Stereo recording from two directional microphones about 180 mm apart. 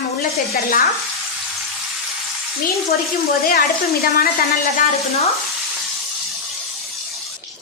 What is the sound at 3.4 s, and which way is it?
Speech, 60° left (ahead or behind).